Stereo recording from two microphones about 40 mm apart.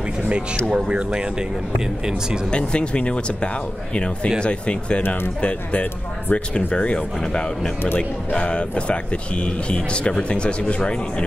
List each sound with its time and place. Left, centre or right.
0.7 s speech: right
2.5 s speech: left